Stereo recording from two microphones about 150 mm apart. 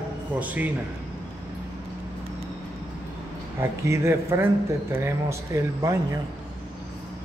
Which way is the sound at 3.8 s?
20° right (ahead or behind).